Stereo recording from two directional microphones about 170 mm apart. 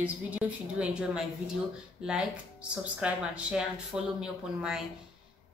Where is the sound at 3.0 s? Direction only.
5° right (ahead or behind).